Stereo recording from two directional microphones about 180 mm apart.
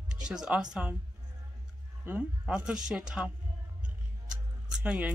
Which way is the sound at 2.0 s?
10° right (ahead or behind).